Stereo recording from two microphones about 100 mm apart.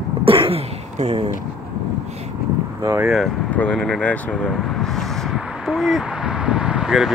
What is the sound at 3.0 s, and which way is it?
Speech, centre (ahead or behind).